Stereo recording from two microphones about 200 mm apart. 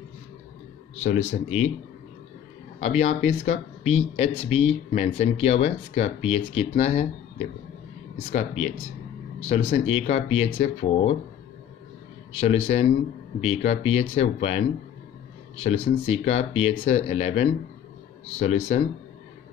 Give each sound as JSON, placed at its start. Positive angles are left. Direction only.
{"t": 1.0, "sound": "speech", "side_deg": 35}
{"t": 2.8, "sound": "speech", "side_deg": 35}
{"t": 12.3, "sound": "speech", "side_deg": 30}